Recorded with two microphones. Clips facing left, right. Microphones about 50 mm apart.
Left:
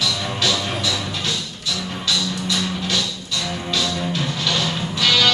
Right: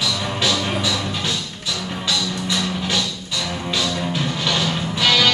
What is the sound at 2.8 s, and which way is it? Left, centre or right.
Music, centre.